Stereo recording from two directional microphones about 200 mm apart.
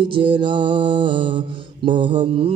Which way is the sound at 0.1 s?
25° right (ahead or behind).